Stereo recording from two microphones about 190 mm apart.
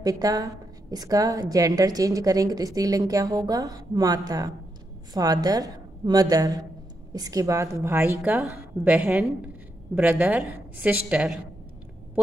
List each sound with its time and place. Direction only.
0.0 s a woman's voice: 20° right (ahead or behind)